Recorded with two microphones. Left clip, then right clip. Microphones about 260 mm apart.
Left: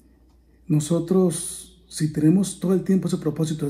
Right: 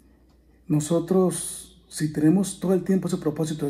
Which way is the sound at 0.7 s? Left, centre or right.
Right.